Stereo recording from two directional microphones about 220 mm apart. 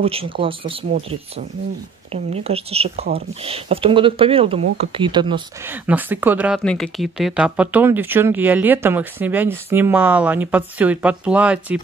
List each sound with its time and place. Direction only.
0.0 s speech: 25° right (ahead or behind)
2.1 s speech: 30° right (ahead or behind)
5.7 s speech: 10° right (ahead or behind)